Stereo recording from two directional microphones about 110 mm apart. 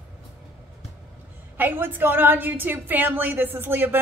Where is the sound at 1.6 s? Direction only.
15° right (ahead or behind).